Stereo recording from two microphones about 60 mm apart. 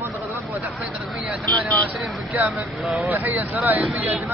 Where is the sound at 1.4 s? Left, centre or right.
Left.